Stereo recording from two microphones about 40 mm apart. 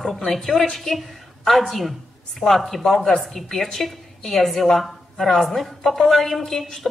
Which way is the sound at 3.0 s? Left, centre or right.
Centre.